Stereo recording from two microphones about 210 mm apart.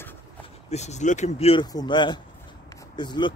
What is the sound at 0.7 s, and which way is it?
Speech, 30° left (ahead or behind).